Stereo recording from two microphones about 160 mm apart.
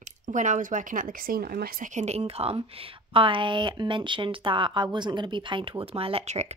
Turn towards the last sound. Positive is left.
turn(degrees=-45)  # may be behind; listen again after turning